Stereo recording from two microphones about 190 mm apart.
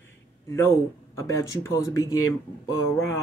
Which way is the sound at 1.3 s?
15° left (ahead or behind).